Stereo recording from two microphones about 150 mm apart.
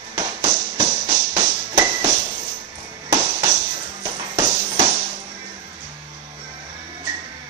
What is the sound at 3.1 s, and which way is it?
Music, 30° right (ahead or behind).